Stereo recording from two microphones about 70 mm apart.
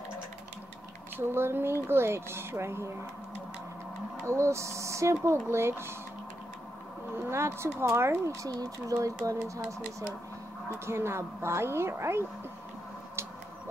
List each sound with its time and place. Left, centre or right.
1.1 s speech: right
4.3 s speech: right
7.2 s speech: right
8.5 s speech: right
9.0 s speech: right
10.9 s speech: right